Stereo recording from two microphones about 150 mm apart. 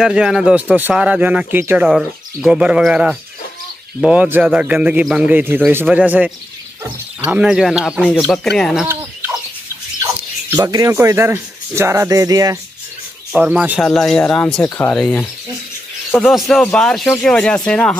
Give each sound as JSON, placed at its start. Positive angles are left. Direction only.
{"t": 0.0, "sound": "speech", "side_deg": -5}
{"t": 1.9, "sound": "speech", "side_deg": -5}
{"t": 10.5, "sound": "speech", "side_deg": -20}
{"t": 13.3, "sound": "speech", "side_deg": -5}
{"t": 13.8, "sound": "speech", "side_deg": 5}
{"t": 14.6, "sound": "speech", "side_deg": 15}
{"t": 15.0, "sound": "speech", "side_deg": 5}